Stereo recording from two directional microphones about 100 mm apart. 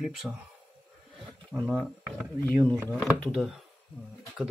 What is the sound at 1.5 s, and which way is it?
Speech, 5° right (ahead or behind).